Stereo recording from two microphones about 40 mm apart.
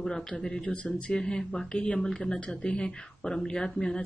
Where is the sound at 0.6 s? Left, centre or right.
Left.